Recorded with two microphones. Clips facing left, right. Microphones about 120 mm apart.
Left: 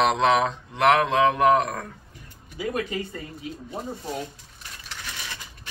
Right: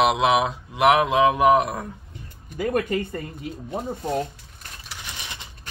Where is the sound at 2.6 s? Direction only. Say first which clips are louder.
Right 5 dB; 50° right (ahead or behind).